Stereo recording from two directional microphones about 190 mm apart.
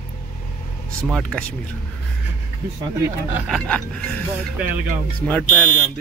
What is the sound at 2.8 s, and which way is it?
Speech, 15° right (ahead or behind).